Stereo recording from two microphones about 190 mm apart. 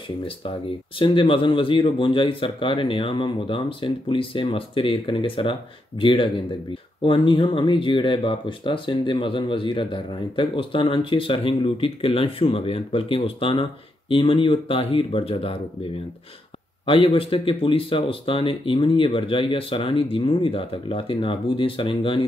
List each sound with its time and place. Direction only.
0.9 s speech: 25° left (ahead or behind)
16.8 s speech: 30° left (ahead or behind)